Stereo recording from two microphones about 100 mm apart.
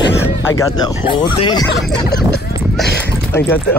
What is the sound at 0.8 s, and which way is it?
Speech, 50° left (ahead or behind).